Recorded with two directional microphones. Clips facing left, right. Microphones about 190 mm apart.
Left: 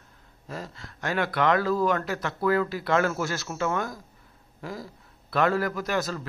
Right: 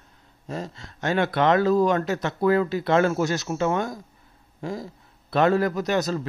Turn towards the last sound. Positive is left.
turn(degrees=-20)  # may be behind; listen again after turning